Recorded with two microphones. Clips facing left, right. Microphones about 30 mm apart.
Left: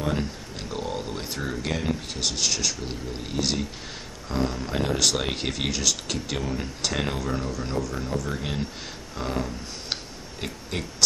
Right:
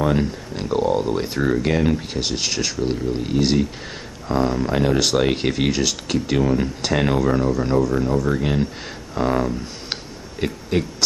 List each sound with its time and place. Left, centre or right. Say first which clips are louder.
0.0 s speech: right 8 dB; centre